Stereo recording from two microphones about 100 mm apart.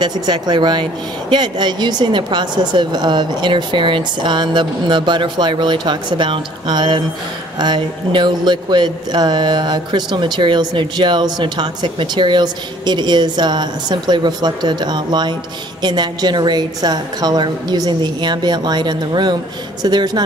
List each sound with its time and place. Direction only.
0.0 s speech: 45° right (ahead or behind)